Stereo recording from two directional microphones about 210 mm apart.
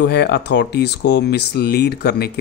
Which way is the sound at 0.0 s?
50° left (ahead or behind).